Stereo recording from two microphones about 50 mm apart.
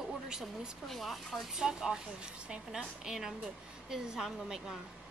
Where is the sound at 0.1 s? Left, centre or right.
Centre.